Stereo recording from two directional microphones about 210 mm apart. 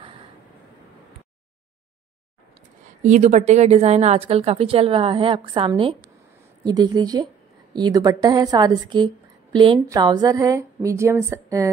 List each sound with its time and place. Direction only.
3.0 s a woman's voice: 35° right (ahead or behind); by 11.7 s 15° right (ahead or behind)